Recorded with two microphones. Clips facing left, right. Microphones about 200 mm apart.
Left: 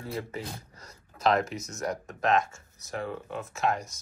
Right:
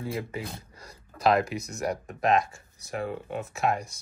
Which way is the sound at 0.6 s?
30° right (ahead or behind).